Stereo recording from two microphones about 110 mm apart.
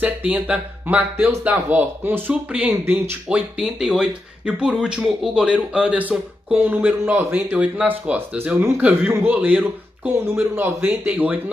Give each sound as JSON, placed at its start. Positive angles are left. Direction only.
{"t": 0.0, "sound": "speech", "side_deg": -10}
{"t": 3.3, "sound": "speech", "side_deg": -5}